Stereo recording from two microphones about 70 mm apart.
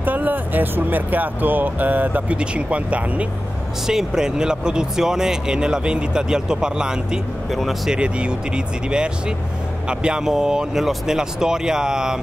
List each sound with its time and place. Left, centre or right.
0.0 s speech: right
3.8 s speech: centre
7.5 s speech: centre
7.9 s speech: centre